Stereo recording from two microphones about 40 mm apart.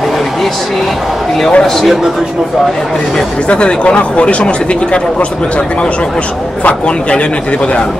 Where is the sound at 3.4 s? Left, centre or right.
Left.